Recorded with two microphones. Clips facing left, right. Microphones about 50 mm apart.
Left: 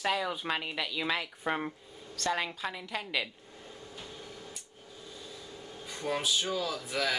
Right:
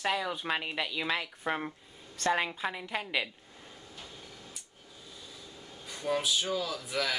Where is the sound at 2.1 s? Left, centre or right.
Right.